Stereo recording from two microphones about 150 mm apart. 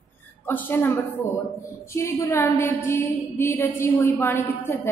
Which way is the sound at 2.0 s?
20° left (ahead or behind).